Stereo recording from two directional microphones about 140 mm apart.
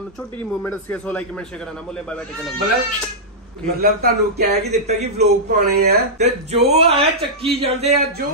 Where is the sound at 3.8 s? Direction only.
90° right.